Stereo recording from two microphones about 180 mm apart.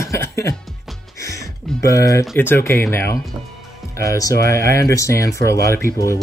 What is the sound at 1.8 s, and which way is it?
Speech, 20° left (ahead or behind).